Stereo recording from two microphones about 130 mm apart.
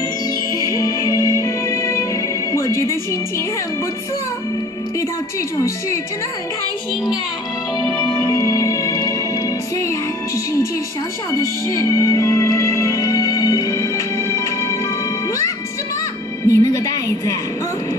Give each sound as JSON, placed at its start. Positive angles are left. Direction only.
{"t": 0.5, "sound": "music", "side_deg": 25}
{"t": 2.5, "sound": "a sound", "side_deg": 20}
{"t": 7.8, "sound": "music", "side_deg": 5}
{"t": 8.2, "sound": "music", "side_deg": 20}
{"t": 16.4, "sound": "music", "side_deg": 25}